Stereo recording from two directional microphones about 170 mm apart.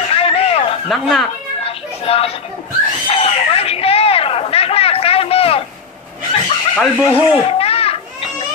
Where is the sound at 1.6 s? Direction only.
35° left (ahead or behind).